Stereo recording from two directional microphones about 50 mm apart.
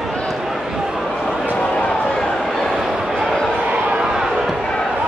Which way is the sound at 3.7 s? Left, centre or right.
Centre.